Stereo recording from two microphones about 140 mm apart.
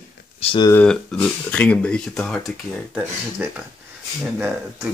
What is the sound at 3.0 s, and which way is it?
Speech, 10° right (ahead or behind).